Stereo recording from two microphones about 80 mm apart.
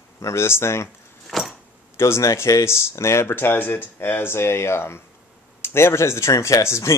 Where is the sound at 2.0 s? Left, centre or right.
Left.